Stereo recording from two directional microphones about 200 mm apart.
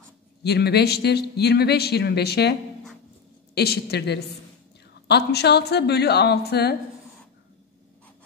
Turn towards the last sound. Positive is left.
turn(degrees=55)  # may be behind; listen again after turning